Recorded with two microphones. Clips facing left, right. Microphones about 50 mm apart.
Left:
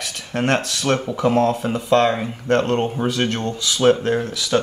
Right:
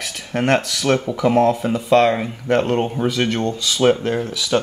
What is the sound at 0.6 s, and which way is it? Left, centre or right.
Speech, left.